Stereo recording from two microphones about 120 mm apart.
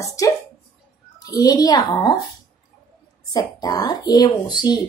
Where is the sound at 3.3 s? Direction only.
30° left (ahead or behind).